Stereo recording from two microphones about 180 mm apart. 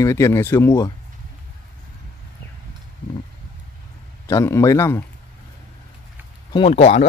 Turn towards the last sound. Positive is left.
turn(degrees=35)  # may be behind; listen again after turning